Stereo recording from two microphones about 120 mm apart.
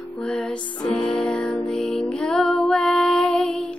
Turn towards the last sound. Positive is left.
turn(degrees=5)  # may be behind; listen again after turning